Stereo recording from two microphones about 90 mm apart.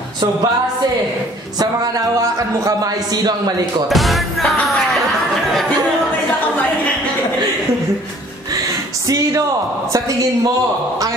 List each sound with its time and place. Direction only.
1.6 s speech: 40° right (ahead or behind)
3.9 s music: centre (ahead or behind)